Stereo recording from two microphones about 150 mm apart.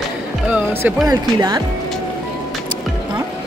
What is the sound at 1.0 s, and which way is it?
Speech, 30° right (ahead or behind).